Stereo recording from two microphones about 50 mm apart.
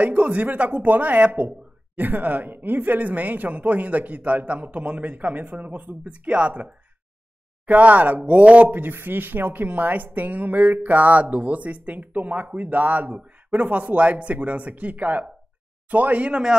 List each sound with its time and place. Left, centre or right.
0.0 s a woman's voice: right
8.6 s a woman's voice: right